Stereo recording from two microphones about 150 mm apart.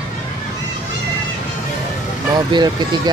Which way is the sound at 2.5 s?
30° right (ahead or behind).